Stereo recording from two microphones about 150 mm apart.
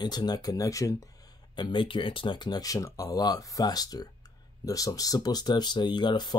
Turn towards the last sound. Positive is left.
turn(degrees=30)  # may be behind; listen again after turning